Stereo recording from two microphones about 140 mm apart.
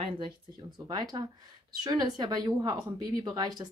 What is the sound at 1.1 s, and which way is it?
Speech, 30° right (ahead or behind).